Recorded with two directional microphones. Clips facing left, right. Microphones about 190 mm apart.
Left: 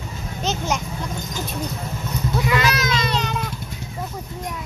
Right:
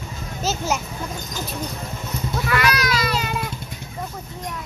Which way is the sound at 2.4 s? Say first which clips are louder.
Left 1 dB; 20° left (ahead or behind).